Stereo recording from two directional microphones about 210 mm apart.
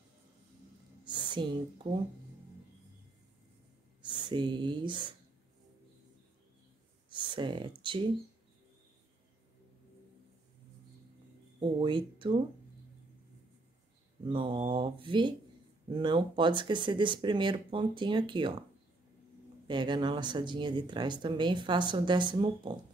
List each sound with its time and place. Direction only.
1.0 s speech: 20° right (ahead or behind)
4.0 s speech: 20° right (ahead or behind)
7.1 s a sound: 20° right (ahead or behind)
11.6 s speech: 25° right (ahead or behind)
14.3 s speech: 25° right (ahead or behind)
19.7 s speech: 20° right (ahead or behind)